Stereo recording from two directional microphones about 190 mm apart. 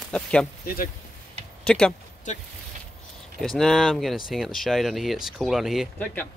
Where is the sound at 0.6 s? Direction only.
50° left (ahead or behind).